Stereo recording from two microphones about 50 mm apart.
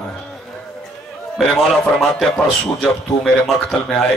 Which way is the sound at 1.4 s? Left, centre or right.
Centre.